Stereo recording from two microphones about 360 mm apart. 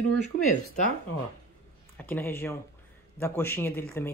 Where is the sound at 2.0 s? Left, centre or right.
Centre.